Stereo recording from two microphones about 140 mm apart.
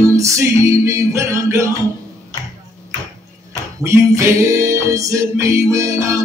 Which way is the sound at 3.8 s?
20° right (ahead or behind).